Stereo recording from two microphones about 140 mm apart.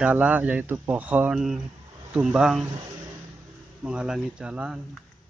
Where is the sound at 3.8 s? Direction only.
5° right (ahead or behind).